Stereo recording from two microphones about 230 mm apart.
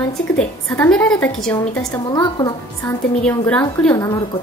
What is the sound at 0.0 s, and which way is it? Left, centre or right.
A woman's voice, centre.